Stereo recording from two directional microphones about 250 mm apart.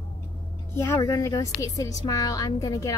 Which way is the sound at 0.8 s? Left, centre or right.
Centre.